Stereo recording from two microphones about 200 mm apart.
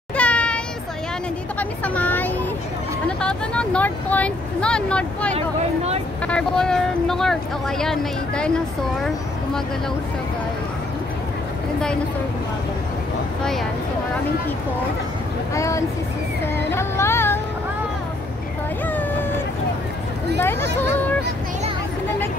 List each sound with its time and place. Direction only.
0.1 s a sound: 5° left (ahead or behind)
1.6 s speech: 10° left (ahead or behind)
15.5 s speech: 15° left (ahead or behind)
16.5 s music: 10° left (ahead or behind)
18.9 s vehicle: 10° left (ahead or behind)
20.8 s speech: 10° left (ahead or behind)